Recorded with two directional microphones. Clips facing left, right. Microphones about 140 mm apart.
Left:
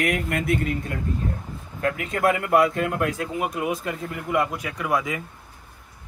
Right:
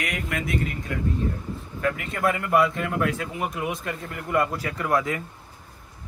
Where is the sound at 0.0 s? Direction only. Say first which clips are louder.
Left 5 dB; 55° left (ahead or behind).